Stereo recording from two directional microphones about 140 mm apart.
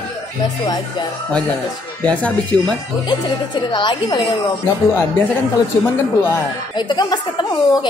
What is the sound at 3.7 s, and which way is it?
Speech, 30° left (ahead or behind).